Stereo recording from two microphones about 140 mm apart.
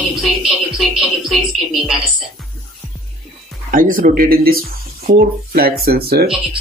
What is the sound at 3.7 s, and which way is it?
Speech, 75° right (ahead or behind).